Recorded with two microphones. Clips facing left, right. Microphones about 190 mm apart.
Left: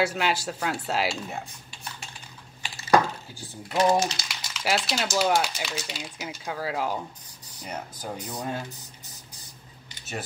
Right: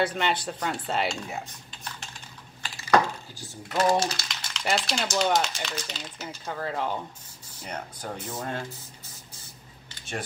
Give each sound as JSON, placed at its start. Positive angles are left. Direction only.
{"t": 0.0, "sound": "speech", "side_deg": 5}
{"t": 3.7, "sound": "speech", "side_deg": 10}